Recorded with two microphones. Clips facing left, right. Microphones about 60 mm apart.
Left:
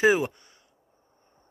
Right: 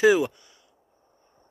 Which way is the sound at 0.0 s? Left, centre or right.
Left.